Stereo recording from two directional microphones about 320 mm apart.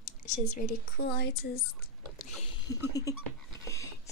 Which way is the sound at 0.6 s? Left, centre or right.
Left.